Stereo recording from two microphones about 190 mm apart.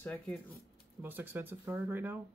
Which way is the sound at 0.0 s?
10° left (ahead or behind).